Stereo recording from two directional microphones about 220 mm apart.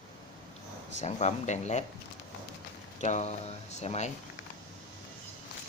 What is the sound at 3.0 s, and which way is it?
Speech, 30° left (ahead or behind).